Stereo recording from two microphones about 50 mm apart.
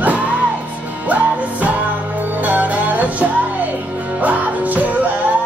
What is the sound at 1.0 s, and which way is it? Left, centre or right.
Music, right.